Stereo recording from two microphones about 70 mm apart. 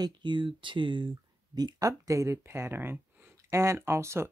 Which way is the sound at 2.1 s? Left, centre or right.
Right.